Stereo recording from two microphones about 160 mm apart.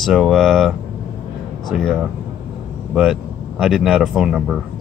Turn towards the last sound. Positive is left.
turn(degrees=-5)  # may be behind; listen again after turning